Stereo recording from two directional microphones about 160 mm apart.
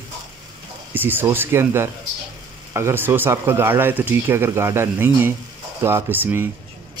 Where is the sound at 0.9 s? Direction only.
10° right (ahead or behind).